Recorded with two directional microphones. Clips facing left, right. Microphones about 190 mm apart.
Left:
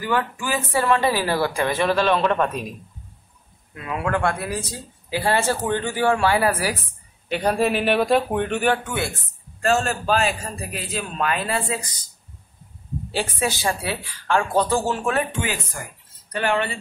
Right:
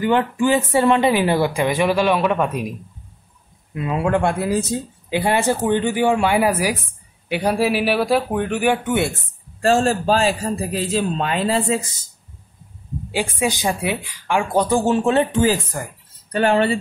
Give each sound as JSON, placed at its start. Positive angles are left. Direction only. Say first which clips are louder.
{"t": 0.0, "sound": "speech", "louder": "right 7 dB", "side_deg": -25}
{"t": 3.7, "sound": "speech", "louder": "right 5 dB", "side_deg": -25}
{"t": 8.8, "sound": "speech", "louder": "right 7 dB", "side_deg": -25}
{"t": 13.1, "sound": "speech", "louder": "right 3 dB", "side_deg": -15}